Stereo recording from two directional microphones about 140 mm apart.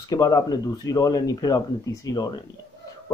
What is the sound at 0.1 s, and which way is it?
Speech, 25° left (ahead or behind).